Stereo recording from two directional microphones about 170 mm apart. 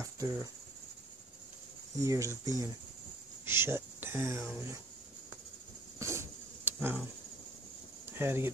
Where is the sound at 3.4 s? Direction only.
15° right (ahead or behind).